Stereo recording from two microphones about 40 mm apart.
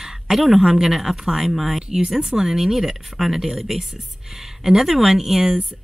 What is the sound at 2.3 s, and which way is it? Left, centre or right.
Speech, centre.